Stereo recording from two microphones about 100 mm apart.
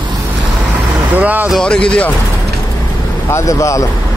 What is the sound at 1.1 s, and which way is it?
Speech, 15° right (ahead or behind).